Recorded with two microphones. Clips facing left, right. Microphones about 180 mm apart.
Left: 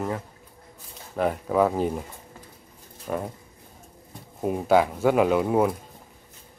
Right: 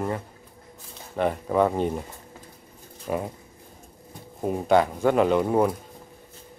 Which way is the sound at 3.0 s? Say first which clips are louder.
Right 1 dB; 5° right (ahead or behind).